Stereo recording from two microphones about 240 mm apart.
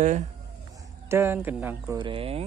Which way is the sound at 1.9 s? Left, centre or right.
Right.